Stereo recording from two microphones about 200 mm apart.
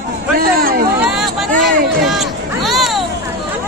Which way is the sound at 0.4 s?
45° right (ahead or behind).